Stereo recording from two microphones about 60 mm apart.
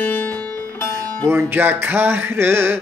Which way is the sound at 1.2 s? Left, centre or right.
Right.